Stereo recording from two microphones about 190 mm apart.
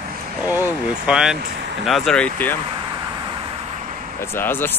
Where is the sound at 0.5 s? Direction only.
10° right (ahead or behind); by 2.6 s 10° left (ahead or behind).